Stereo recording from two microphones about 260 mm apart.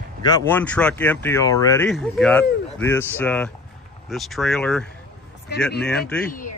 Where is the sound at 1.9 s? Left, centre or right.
Centre.